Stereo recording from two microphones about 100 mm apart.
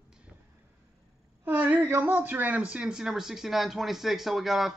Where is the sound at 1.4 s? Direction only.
15° right (ahead or behind).